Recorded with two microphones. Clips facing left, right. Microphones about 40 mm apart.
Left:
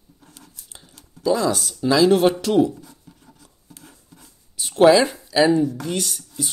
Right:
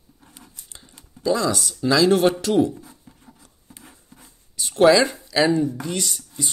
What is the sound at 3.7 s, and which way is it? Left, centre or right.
Filing, right.